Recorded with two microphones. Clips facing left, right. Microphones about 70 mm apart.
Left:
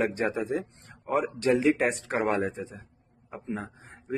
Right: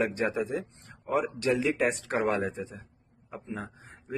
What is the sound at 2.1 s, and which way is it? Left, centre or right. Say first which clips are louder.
A man's voice: left 1 dB; left.